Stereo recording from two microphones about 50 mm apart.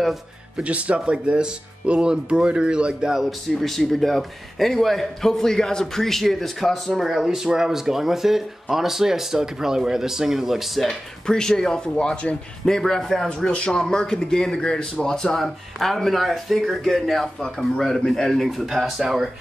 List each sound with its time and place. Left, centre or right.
0.6 s speech: right
3.6 s a man's voice: centre
11.2 s speech: centre
15.3 s a man's voice: centre
18.5 s a man's voice: centre